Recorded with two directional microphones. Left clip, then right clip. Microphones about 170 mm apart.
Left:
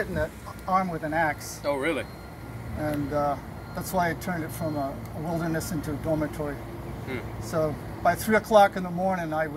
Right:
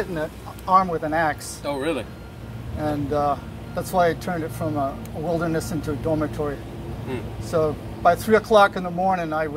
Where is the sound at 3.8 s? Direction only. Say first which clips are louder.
Right 7 dB; 10° left (ahead or behind).